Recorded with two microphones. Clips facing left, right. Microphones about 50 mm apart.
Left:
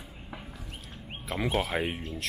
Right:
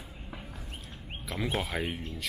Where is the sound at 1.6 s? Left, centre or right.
Left.